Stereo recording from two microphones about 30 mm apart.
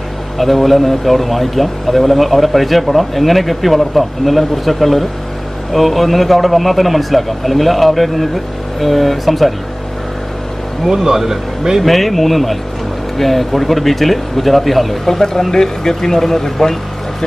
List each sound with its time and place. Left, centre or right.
0.4 s speech: centre
10.9 s speech: centre
11.8 s speech: centre